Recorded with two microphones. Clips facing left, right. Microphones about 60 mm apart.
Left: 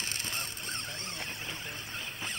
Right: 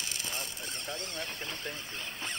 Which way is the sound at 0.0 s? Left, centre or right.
Left.